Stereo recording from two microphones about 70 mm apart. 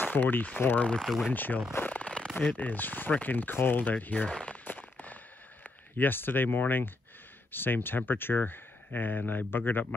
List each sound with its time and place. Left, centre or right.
0.0 s speech: left
0.8 s speech: centre
1.3 s speech: left
1.9 s a sound: left
2.5 s speech: left
4.3 s speech: centre
4.6 s a sound: left
5.9 s speech: left